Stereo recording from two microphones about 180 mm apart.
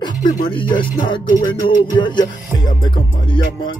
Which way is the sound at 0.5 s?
30° left (ahead or behind).